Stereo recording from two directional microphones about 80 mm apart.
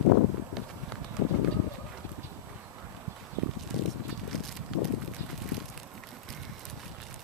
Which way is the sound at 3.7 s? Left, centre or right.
Centre.